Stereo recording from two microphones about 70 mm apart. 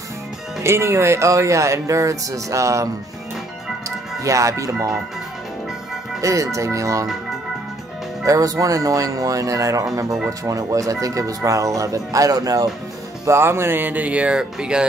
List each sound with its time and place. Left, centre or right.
0.6 s speech: right
4.2 s speech: right
6.2 s speech: right
8.3 s speech: right
13.2 s speech: right; by 14.9 s centre